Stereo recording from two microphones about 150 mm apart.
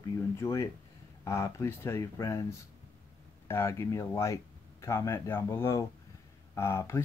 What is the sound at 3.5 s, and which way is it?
Speech, 15° left (ahead or behind).